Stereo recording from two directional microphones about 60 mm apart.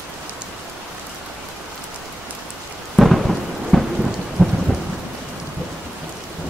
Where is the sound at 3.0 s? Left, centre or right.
Centre.